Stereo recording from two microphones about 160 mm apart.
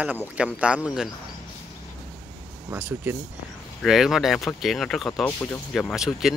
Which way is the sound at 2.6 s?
15° right (ahead or behind).